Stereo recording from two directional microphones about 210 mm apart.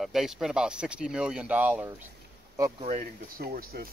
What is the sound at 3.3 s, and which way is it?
Speech, 45° right (ahead or behind).